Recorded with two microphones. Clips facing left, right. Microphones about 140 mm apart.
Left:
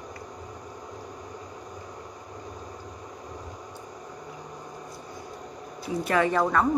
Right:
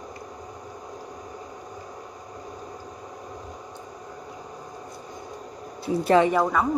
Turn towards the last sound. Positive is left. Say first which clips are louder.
# right 1 dB
turn(degrees=-5)  # may be behind; listen again after turning